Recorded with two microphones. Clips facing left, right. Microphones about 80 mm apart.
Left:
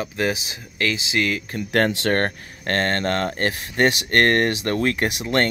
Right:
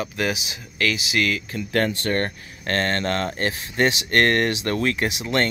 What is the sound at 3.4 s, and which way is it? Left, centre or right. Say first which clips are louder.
Speech: left 2 dB; left.